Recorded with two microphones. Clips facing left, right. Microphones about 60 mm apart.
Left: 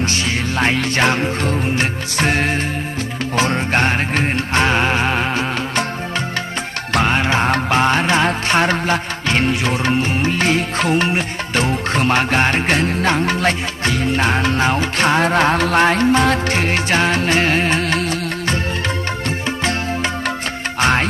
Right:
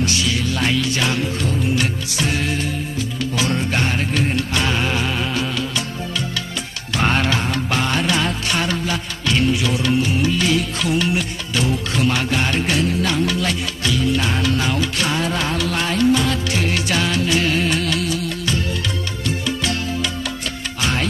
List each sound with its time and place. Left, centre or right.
0.0 s music: left
7.1 s music: centre
7.7 s music: left
19.6 s music: left